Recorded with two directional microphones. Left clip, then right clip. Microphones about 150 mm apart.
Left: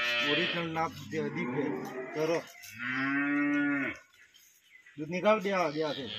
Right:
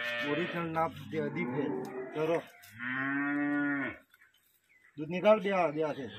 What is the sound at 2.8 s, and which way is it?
Moo, 60° left (ahead or behind).